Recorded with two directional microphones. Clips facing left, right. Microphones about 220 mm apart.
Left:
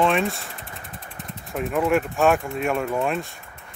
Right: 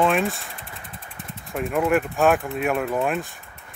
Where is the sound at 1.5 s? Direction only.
Centre (ahead or behind).